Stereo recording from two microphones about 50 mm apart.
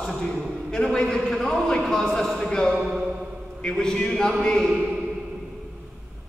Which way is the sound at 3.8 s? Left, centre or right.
Centre.